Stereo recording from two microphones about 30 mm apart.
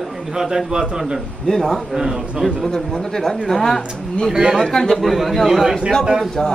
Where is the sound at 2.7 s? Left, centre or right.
Centre.